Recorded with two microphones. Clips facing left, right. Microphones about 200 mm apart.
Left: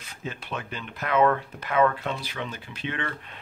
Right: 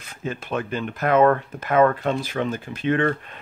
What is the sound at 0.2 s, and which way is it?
Speech, 50° right (ahead or behind).